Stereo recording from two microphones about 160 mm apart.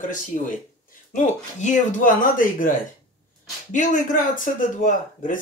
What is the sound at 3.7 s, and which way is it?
Speech, 50° left (ahead or behind).